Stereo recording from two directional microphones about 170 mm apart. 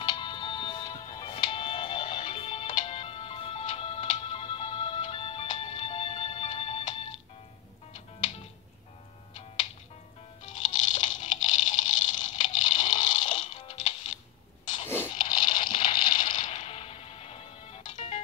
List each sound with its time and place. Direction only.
0.0 s music: 30° left (ahead or behind)
10.4 s music: 50° left (ahead or behind)
13.2 s music: 35° left (ahead or behind)
15.2 s a sound: 30° left (ahead or behind)
16.3 s music: 45° left (ahead or behind)